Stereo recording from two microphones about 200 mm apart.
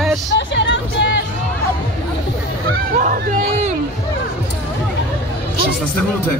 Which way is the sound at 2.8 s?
45° right (ahead or behind).